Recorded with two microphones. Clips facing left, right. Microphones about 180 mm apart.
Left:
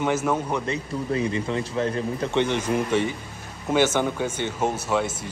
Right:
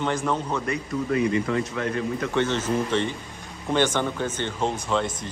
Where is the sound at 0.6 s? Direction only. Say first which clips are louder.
Right 1 dB; 25° left (ahead or behind).